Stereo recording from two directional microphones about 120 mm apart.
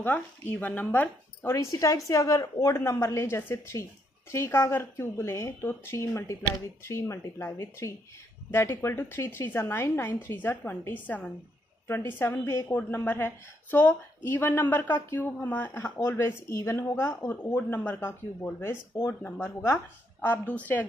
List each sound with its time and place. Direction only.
0.0 s a woman's voice: 15° left (ahead or behind)